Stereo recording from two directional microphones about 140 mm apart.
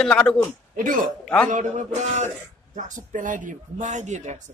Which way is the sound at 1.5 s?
60° right (ahead or behind).